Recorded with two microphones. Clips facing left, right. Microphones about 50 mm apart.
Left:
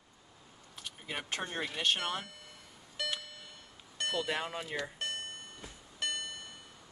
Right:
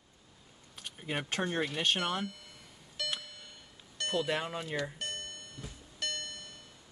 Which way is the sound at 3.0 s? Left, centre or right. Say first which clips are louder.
Even; centre.